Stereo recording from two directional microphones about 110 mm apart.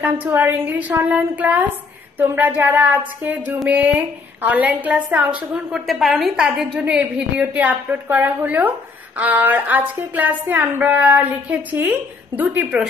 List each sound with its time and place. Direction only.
0.0 s a woman's voice: 15° right (ahead or behind)
5.9 s a woman's voice: centre (ahead or behind)